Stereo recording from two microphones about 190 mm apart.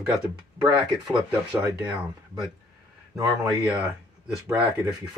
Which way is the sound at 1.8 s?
10° right (ahead or behind).